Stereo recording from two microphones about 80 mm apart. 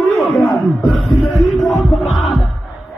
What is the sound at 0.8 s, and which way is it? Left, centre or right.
Speech, centre.